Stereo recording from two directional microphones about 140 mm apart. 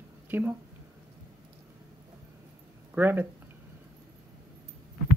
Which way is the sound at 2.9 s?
15° right (ahead or behind).